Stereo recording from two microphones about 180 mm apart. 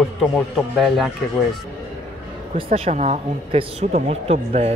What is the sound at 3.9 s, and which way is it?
Speech, 50° right (ahead or behind).